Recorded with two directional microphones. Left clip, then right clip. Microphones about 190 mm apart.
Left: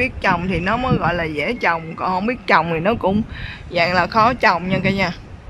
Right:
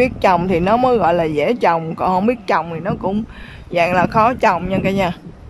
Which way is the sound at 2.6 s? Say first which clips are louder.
Left 4 dB; centre (ahead or behind).